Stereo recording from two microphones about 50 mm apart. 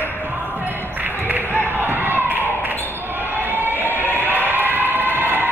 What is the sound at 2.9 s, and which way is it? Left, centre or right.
Buzzer, right.